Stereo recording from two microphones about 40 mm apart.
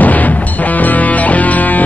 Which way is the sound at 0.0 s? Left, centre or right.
Left.